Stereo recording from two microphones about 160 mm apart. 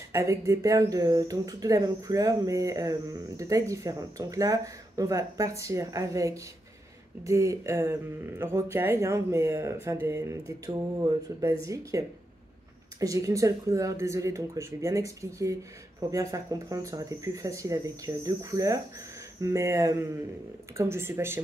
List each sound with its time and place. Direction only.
0.1 s speech: 20° right (ahead or behind)
13.0 s speech: 20° right (ahead or behind)